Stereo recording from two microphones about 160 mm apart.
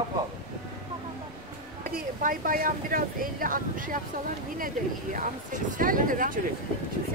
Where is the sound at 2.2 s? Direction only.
60° right (ahead or behind).